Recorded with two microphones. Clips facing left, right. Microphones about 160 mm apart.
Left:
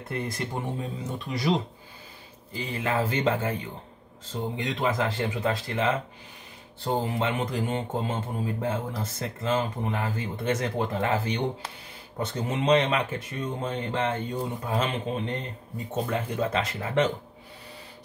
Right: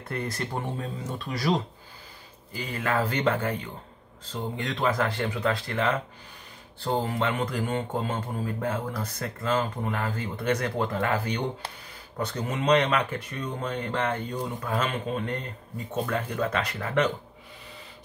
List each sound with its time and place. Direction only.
0.0 s speech: 20° left (ahead or behind)
2.5 s speech: 25° left (ahead or behind)